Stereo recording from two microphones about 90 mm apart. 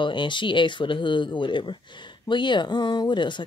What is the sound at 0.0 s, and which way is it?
Speech, 65° left (ahead or behind).